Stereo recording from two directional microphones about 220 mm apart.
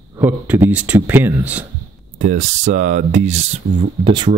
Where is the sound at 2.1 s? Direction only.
35° right (ahead or behind).